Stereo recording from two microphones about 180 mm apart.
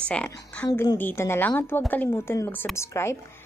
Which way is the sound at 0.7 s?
20° left (ahead or behind).